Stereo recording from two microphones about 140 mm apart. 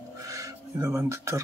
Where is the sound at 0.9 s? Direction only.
20° right (ahead or behind).